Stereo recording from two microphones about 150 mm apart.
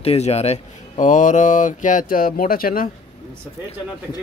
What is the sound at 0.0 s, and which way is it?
Speech, 45° left (ahead or behind).